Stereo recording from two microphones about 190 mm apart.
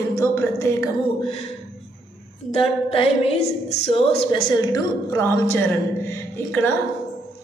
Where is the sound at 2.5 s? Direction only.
30° left (ahead or behind).